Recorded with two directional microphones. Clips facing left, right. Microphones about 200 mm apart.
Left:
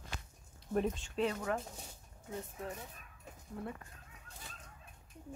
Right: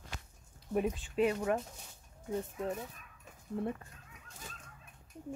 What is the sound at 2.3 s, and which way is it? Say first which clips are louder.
Speech: right 7 dB; 35° right (ahead or behind).